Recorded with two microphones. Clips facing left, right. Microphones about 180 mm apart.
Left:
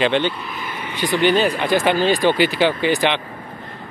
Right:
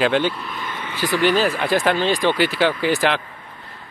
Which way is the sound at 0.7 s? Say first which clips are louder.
Left 1 dB; 15° left (ahead or behind).